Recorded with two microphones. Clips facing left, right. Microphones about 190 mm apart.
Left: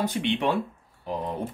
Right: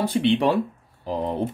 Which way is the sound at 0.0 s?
30° right (ahead or behind).